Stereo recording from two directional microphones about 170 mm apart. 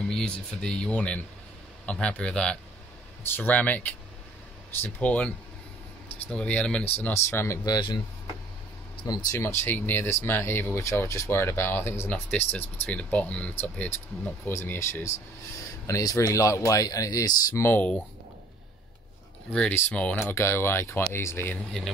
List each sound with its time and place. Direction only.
0.1 s speech: 5° left (ahead or behind)
19.5 s speech: 5° left (ahead or behind)